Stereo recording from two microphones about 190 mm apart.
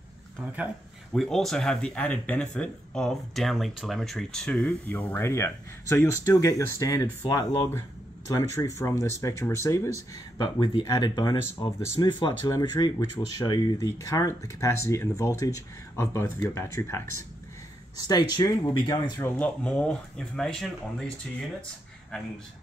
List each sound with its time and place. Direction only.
0.4 s speech: 10° right (ahead or behind)